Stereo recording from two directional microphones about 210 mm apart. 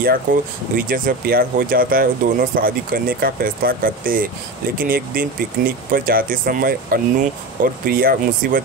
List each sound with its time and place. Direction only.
0.0 s speech: 45° right (ahead or behind)